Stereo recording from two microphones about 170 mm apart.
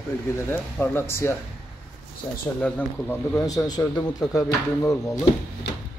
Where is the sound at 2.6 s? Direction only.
10° left (ahead or behind).